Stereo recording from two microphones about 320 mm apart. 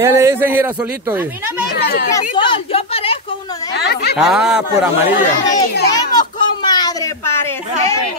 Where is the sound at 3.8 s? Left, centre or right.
Left.